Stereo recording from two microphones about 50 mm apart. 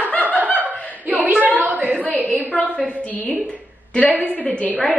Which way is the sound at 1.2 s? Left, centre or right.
Right.